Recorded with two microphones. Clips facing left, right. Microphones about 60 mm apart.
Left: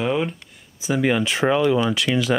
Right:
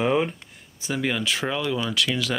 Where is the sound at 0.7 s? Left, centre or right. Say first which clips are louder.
Left 6 dB; centre.